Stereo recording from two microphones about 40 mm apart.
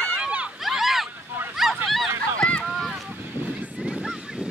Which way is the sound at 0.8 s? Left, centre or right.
Centre.